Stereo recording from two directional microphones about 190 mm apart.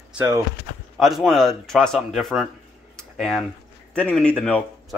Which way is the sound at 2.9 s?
Centre (ahead or behind).